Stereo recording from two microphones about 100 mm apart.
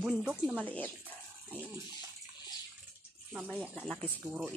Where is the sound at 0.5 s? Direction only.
15° left (ahead or behind).